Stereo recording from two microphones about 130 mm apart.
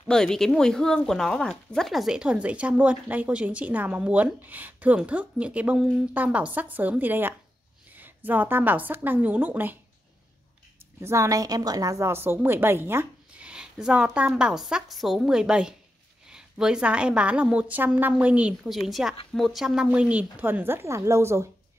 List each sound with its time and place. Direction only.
0.1 s a woman's voice: 5° left (ahead or behind); by 9.8 s 15° right (ahead or behind)
11.0 s speech: 20° right (ahead or behind)